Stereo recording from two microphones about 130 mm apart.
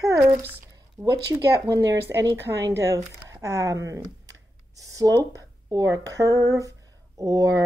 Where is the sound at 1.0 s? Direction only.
30° right (ahead or behind).